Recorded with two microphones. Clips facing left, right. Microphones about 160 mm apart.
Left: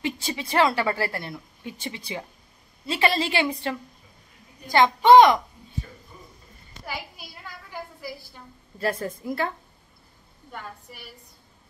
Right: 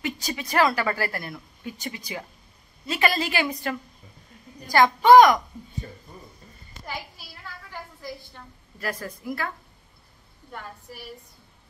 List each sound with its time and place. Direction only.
0.0 s a woman's voice: 30° left (ahead or behind)
8.0 s a woman's voice: 5° left (ahead or behind)
8.7 s a woman's voice: 25° left (ahead or behind)